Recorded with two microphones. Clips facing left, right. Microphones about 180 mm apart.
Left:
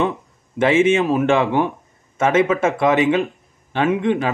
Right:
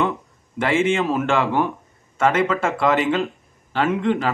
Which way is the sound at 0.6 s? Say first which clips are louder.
Left 4 dB; 20° left (ahead or behind).